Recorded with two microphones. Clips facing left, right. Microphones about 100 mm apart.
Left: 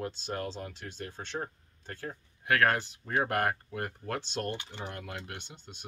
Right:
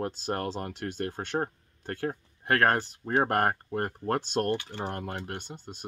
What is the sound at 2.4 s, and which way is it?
Speech, 40° right (ahead or behind).